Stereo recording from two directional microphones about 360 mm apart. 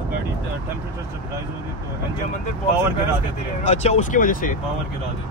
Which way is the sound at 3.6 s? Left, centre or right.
Centre.